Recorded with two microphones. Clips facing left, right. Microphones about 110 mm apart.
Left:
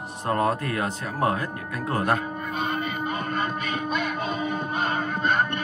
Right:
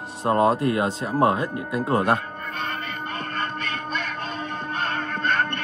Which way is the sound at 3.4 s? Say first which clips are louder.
Left 2 dB; 10° left (ahead or behind).